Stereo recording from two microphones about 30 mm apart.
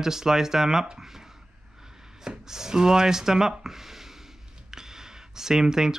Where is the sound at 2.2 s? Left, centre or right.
Centre.